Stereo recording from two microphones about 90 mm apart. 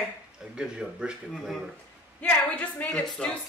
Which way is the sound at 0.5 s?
10° right (ahead or behind).